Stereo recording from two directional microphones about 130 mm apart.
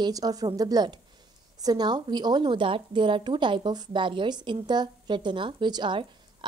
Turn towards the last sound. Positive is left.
turn(degrees=-40)  # may be behind; listen again after turning